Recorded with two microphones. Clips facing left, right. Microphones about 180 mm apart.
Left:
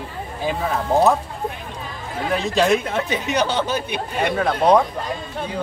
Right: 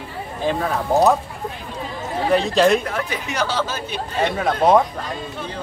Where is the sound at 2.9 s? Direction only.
20° left (ahead or behind).